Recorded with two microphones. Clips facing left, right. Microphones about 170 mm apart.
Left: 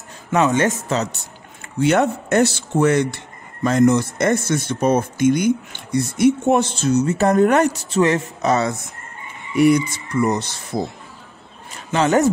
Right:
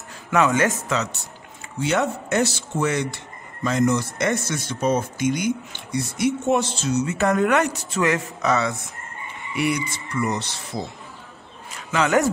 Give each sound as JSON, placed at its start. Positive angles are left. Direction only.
{"t": 0.3, "sound": "speech", "side_deg": 25}
{"t": 1.8, "sound": "speech", "side_deg": 55}
{"t": 11.9, "sound": "speech", "side_deg": 30}